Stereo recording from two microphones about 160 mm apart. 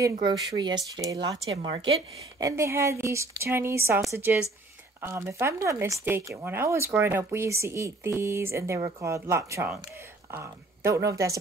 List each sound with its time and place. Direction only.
0.2 s speech: 25° right (ahead or behind)
1.4 s a woman's voice: 35° right (ahead or behind)
2.3 s speech: 20° right (ahead or behind)